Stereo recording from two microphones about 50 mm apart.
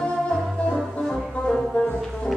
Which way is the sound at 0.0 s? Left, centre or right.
Centre.